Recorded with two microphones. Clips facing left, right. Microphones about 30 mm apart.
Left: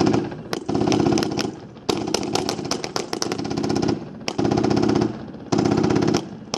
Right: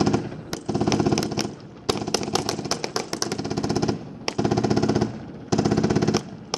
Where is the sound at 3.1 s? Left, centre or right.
Centre.